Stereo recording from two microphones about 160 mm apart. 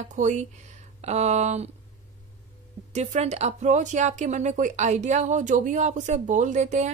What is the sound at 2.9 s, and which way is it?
Speech, 45° right (ahead or behind).